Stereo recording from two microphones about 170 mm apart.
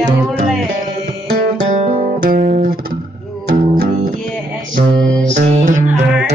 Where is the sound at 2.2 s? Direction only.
50° right (ahead or behind).